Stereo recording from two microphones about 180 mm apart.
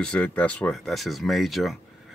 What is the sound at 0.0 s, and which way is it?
Speech, 5° left (ahead or behind).